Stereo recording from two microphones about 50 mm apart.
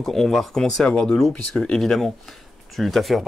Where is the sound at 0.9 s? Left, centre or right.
Centre.